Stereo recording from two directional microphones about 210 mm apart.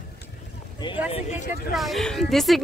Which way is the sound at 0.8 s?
20° left (ahead or behind).